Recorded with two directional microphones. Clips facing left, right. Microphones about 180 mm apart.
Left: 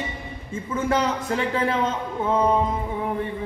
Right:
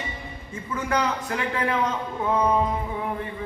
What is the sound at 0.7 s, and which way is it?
A man's voice, 25° left (ahead or behind).